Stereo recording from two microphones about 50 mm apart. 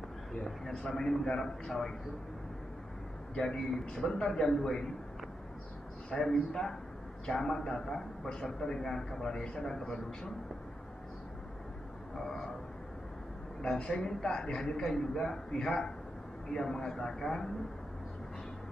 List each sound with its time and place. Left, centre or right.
0.4 s a man's voice: centre
3.3 s a man's voice: centre
6.1 s a man's voice: centre
13.6 s a man's voice: left